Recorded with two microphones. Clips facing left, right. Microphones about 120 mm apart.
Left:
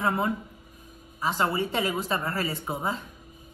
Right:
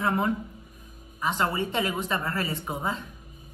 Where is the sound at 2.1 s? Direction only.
35° left (ahead or behind).